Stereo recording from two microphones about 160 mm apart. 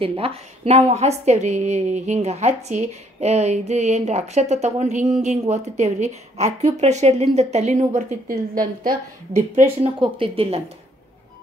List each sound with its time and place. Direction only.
0.0 s a woman's voice: 35° right (ahead or behind)
8.5 s a woman's voice: 25° right (ahead or behind)